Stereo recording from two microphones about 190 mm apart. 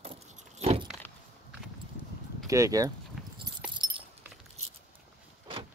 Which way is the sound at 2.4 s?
15° right (ahead or behind).